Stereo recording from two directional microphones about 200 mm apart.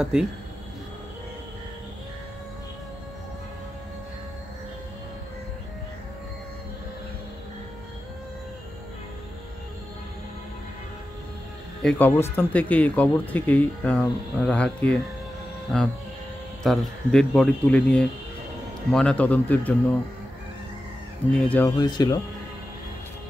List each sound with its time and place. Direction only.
0.0 s speech: 5° right (ahead or behind)
11.8 s speech: 5° left (ahead or behind)
21.3 s speech: 5° left (ahead or behind)
21.7 s speech: 20° left (ahead or behind)